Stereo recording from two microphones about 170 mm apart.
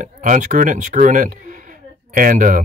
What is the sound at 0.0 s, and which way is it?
Speech, 50° right (ahead or behind).